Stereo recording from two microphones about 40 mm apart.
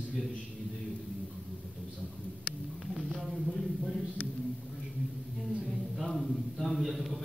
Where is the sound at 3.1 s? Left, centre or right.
Centre.